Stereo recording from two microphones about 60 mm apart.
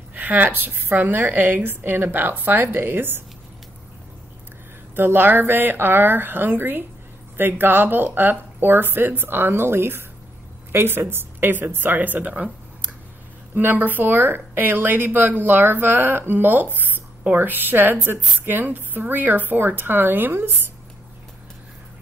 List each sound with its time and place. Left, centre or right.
0.1 s speech: right
4.9 s speech: right
12.3 s speech: centre
13.6 s speech: right